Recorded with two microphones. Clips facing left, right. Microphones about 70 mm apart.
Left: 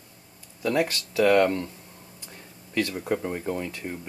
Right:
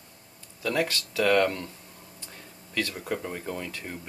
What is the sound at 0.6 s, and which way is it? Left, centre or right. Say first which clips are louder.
Speech: left 3 dB; left.